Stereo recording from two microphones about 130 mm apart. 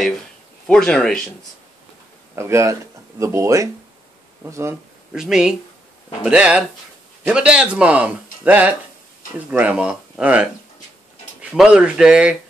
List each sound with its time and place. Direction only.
0.7 s speech: 5° left (ahead or behind)
2.3 s speech: 20° right (ahead or behind)
5.1 s speech: 5° right (ahead or behind)
11.5 s speech: 5° right (ahead or behind)